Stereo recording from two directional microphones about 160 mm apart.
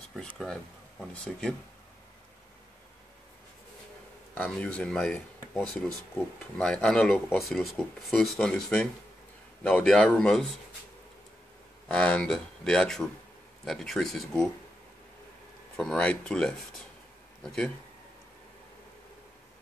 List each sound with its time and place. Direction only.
1.3 s speech: centre (ahead or behind)
4.4 s speech: 5° left (ahead or behind)
11.9 s speech: 5° left (ahead or behind)
15.7 s a man's voice: 5° left (ahead or behind)